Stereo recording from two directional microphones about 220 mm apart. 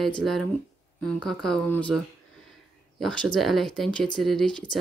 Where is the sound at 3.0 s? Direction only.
5° left (ahead or behind).